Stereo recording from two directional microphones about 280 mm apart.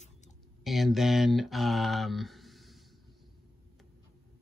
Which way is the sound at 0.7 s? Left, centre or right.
Centre.